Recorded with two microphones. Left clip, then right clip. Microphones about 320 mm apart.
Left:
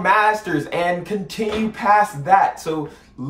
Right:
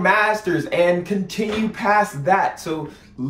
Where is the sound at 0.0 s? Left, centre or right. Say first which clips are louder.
Left 1 dB; centre.